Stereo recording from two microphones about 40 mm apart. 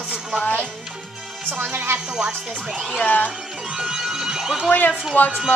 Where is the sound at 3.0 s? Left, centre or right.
Left.